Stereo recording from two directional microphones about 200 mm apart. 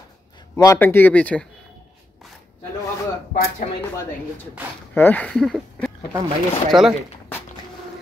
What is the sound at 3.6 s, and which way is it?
Speech, 35° left (ahead or behind).